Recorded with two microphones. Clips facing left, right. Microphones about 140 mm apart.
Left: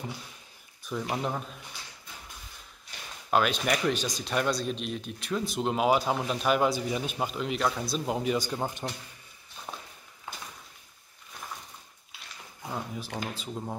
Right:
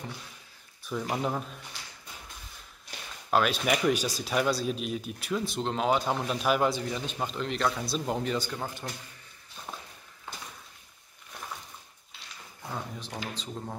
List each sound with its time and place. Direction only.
0.8 s speech: centre (ahead or behind)
3.3 s speech: centre (ahead or behind); by 8.8 s 20° left (ahead or behind)
12.7 s speech: 5° left (ahead or behind)